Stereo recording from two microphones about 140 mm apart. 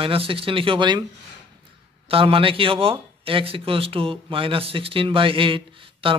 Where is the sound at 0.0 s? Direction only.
40° right (ahead or behind).